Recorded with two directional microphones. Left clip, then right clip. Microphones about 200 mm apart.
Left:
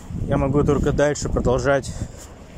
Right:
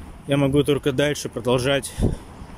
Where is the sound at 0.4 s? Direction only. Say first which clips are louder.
Right 1 dB; 30° right (ahead or behind).